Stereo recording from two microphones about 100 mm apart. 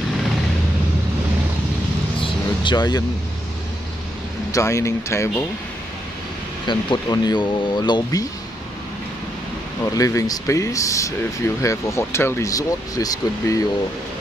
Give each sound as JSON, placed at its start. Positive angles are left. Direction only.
{"t": 2.6, "sound": "speech", "side_deg": 45}
{"t": 4.5, "sound": "speech", "side_deg": 30}
{"t": 6.7, "sound": "speech", "side_deg": 45}
{"t": 9.9, "sound": "speech", "side_deg": 35}